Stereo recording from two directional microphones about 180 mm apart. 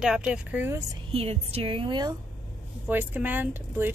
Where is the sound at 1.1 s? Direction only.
35° right (ahead or behind).